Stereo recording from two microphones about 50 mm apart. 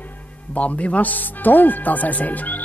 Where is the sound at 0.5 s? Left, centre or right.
Left.